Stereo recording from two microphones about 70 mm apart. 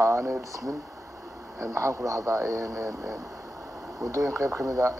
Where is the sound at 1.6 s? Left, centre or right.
Right.